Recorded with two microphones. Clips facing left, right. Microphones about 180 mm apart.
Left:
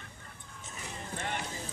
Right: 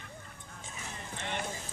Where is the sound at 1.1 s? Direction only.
50° left (ahead or behind).